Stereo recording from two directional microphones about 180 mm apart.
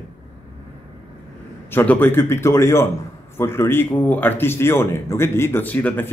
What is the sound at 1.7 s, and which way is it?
Speech, 10° left (ahead or behind).